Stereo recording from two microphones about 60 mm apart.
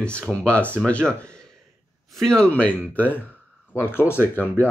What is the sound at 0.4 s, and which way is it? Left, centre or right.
Speech, left.